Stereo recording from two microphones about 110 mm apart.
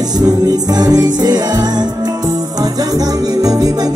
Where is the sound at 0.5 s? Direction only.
35° right (ahead or behind).